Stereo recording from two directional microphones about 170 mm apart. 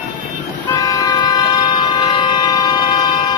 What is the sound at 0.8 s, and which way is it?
Vehicle, 20° left (ahead or behind).